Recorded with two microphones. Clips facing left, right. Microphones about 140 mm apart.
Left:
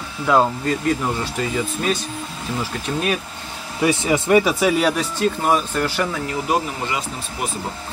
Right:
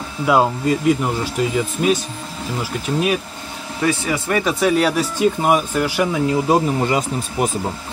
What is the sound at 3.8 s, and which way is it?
Speech, 20° left (ahead or behind).